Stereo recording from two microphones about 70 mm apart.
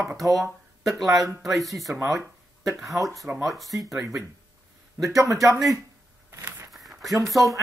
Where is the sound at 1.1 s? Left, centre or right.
Right.